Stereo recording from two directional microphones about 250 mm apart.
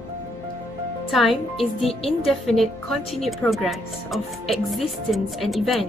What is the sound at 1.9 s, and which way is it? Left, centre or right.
Speech, left.